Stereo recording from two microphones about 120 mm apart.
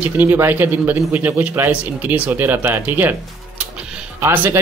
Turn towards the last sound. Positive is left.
turn(degrees=-20)  # may be behind; listen again after turning